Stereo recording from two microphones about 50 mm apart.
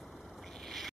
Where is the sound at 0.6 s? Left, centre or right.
Centre.